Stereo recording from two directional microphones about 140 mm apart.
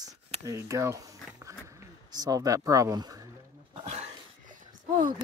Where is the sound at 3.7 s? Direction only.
50° right (ahead or behind); by 5.1 s 70° right (ahead or behind).